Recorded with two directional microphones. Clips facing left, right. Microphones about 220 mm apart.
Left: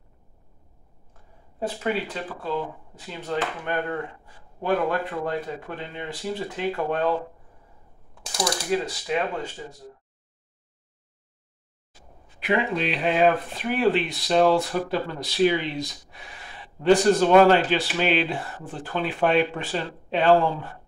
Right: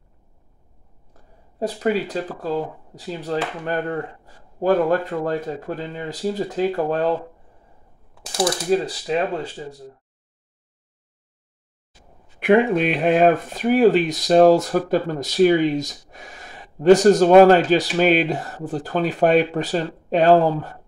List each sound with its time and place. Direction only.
1.1 s speech: 40° right (ahead or behind)
8.4 s speech: 35° right (ahead or behind)
12.4 s speech: 55° right (ahead or behind)